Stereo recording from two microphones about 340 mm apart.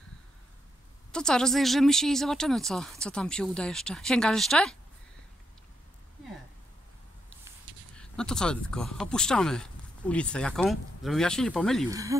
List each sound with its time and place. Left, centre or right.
1.1 s speech: centre
7.9 s speech: centre
11.9 s speech: centre